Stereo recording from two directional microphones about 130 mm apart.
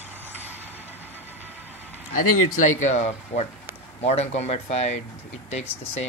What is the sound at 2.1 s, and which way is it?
Speech, 80° left.